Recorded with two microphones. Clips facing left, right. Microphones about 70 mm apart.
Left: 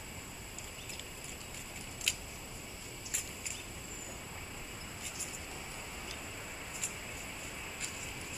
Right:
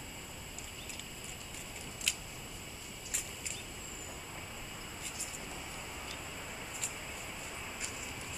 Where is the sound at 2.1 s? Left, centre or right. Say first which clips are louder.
Even; centre.